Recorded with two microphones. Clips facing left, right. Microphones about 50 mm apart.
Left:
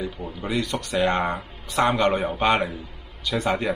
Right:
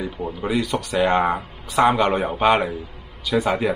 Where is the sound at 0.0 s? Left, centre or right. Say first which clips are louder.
Right 4 dB; centre.